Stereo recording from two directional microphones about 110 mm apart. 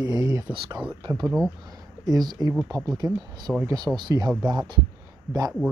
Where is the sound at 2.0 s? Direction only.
35° right (ahead or behind).